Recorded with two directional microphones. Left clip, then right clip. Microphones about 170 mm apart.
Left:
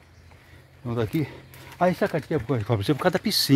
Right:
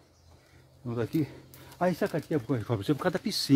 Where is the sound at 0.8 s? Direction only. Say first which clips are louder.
Left 4 dB; 20° left (ahead or behind).